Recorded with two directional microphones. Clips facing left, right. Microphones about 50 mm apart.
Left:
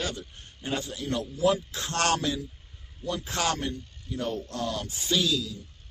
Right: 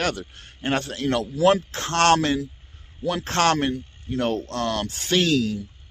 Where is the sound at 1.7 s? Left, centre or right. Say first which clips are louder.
Right 8 dB; right.